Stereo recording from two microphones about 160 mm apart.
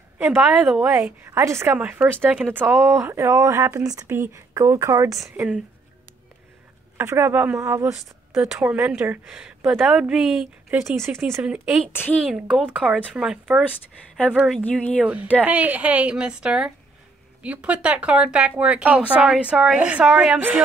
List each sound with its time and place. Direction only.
0.2 s speech: 10° right (ahead or behind)
7.0 s speech: 15° right (ahead or behind)
7.9 s speech: centre (ahead or behind)
10.8 s speech: 15° right (ahead or behind)
11.9 s speech: 15° left (ahead or behind)
12.3 s speech: 5° right (ahead or behind)
15.4 s speech: 10° right (ahead or behind)